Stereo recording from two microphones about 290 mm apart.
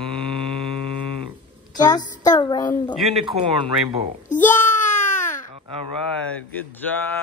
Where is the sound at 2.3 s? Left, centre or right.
Centre.